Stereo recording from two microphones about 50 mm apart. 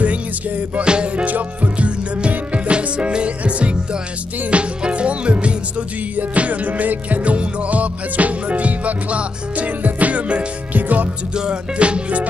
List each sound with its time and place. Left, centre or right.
0.0 s music: right
11.3 s music: centre